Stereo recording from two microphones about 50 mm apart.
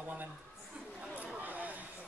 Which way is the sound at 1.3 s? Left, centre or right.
Right.